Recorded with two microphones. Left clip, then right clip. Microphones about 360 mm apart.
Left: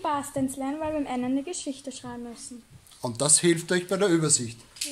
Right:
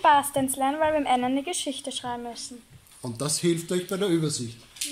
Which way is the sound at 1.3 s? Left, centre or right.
Right.